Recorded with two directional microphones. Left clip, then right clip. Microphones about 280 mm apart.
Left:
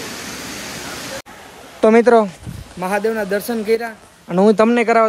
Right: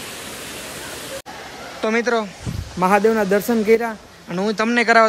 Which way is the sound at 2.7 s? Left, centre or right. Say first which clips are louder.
Right 3 dB; centre.